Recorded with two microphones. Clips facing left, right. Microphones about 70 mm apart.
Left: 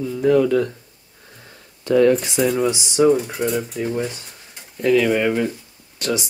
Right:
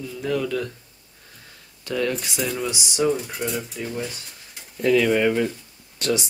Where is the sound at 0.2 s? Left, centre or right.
Left.